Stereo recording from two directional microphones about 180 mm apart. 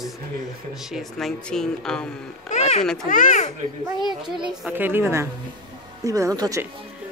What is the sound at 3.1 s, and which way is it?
Speech, 45° left (ahead or behind).